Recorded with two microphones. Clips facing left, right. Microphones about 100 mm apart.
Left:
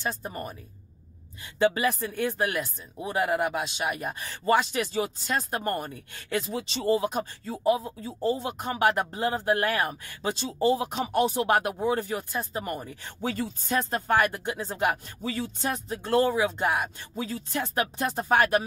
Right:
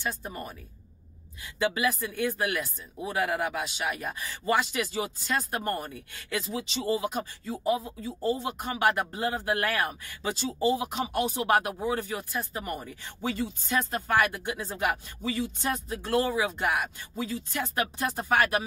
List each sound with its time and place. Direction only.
0.0 s speech: 30° left (ahead or behind)
1.6 s speech: 35° left (ahead or behind)
3.0 s speech: 20° left (ahead or behind)
4.2 s speech: 35° left (ahead or behind)
16.0 s speech: 25° left (ahead or behind)